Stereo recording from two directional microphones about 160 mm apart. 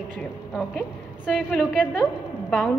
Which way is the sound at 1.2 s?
5° left (ahead or behind).